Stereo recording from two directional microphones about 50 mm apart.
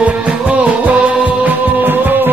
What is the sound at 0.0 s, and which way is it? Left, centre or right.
Music, right.